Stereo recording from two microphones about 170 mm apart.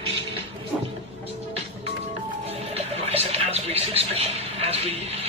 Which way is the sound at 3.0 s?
35° right (ahead or behind).